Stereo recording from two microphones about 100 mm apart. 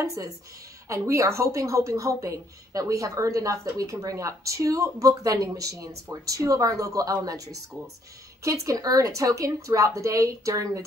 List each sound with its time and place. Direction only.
0.0 s a woman's voice: 35° right (ahead or behind)